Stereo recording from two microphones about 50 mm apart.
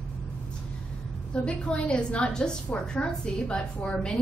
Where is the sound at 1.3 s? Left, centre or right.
Left.